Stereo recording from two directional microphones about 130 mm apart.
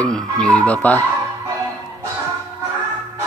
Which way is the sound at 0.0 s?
5° left (ahead or behind).